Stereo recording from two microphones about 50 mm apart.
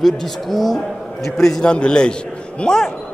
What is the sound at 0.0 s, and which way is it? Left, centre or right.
Speech, centre.